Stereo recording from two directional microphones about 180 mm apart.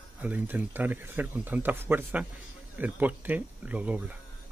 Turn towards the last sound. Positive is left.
turn(degrees=-10)  # may be behind; listen again after turning